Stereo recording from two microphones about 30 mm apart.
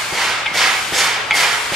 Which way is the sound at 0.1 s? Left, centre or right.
Centre.